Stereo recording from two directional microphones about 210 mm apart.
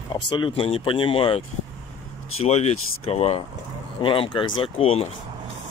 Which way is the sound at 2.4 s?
30° left (ahead or behind).